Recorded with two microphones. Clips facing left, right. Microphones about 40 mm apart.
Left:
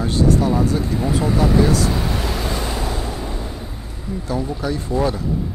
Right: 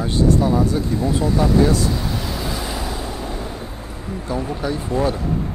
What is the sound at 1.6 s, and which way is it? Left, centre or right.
Speech, left.